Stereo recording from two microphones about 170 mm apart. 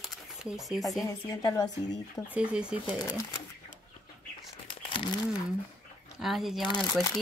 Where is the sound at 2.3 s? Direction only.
5° right (ahead or behind).